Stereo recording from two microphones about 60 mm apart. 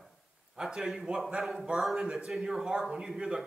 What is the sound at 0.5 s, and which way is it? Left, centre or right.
A man's voice, centre.